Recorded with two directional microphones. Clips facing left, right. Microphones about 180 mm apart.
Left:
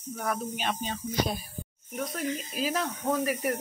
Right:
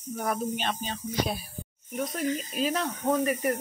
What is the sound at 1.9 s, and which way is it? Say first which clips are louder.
Speech: right 3 dB; centre (ahead or behind).